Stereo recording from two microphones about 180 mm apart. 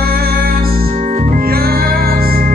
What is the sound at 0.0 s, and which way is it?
Music, 55° right (ahead or behind).